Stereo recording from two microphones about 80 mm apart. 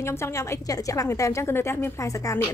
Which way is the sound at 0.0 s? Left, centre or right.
Left.